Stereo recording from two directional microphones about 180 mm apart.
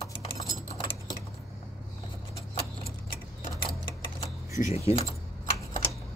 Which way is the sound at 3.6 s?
30° left (ahead or behind).